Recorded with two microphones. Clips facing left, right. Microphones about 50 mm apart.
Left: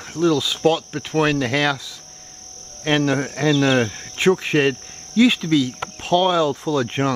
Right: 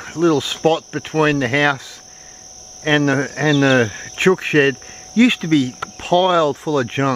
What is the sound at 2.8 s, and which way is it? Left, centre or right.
Speech, right.